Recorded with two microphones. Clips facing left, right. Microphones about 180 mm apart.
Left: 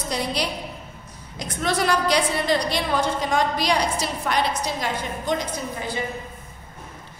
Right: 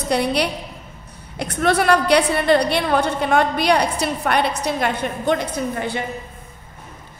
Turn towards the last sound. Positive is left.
turn(degrees=-65)  # may be behind; listen again after turning